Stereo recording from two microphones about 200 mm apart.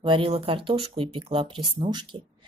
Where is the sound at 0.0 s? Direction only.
25° right (ahead or behind).